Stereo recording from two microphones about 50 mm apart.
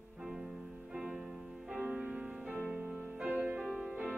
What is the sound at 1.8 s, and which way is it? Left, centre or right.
Music, right.